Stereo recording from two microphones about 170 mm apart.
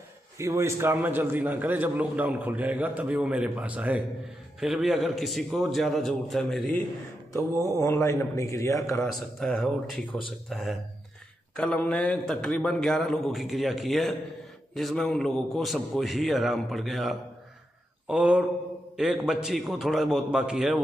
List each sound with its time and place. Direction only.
0.4 s a man's voice: 15° right (ahead or behind); by 6.7 s centre (ahead or behind)
7.7 s a man's voice: 20° left (ahead or behind)
9.0 s a man's voice: 5° left (ahead or behind)